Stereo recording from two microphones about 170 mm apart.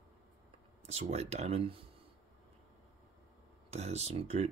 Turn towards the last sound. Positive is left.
turn(degrees=-40)  # may be behind; listen again after turning